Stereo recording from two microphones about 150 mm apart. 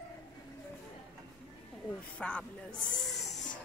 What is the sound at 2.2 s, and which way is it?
Speech, 10° left (ahead or behind).